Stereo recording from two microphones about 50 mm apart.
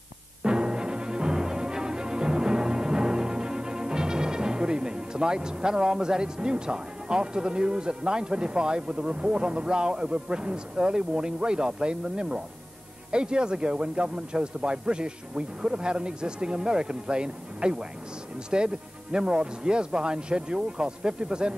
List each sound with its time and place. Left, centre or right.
0.4 s music: centre
13.1 s speech: centre